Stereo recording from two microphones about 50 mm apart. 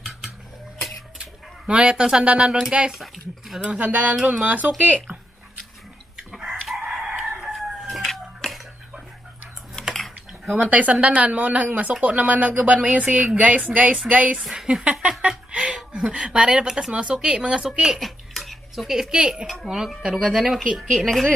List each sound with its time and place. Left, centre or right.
1.1 s speech: right
3.9 s speech: right
6.7 s chicken: centre
7.9 s a sound: centre
8.4 s a sound: centre
9.9 s typing: centre
10.6 s speech: right
14.5 s speech: centre
14.9 s a sound: centre
15.9 s speech: centre
17.7 s a sound: centre
18.9 s speech: centre
19.4 s speech: centre